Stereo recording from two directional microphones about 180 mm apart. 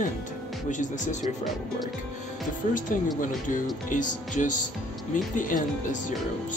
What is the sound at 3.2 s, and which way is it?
Speech, 45° left (ahead or behind).